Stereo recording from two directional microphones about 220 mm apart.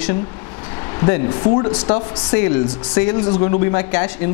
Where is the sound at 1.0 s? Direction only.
20° left (ahead or behind).